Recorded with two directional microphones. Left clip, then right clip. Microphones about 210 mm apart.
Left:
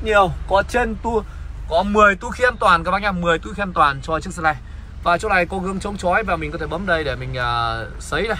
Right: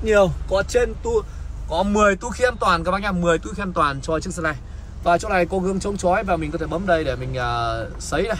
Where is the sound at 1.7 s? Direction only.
5° right (ahead or behind).